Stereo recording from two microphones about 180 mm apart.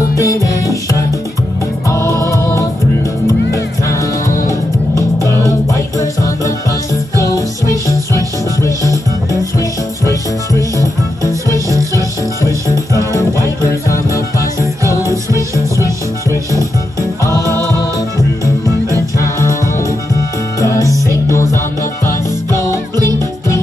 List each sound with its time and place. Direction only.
0.1 s music: 15° left (ahead or behind)
1.9 s music: 15° left (ahead or behind)
3.5 s music: 15° left (ahead or behind)
7.6 s music: 20° right (ahead or behind)
8.6 s music: 15° left (ahead or behind)
10.5 s music: 20° right (ahead or behind)
18.4 s music: 15° right (ahead or behind)
20.8 s music: 15° right (ahead or behind)